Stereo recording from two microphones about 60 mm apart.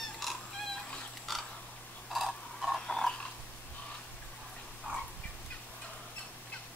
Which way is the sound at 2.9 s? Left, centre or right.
Centre.